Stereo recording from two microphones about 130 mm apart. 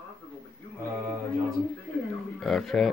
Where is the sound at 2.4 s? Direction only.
Centre (ahead or behind).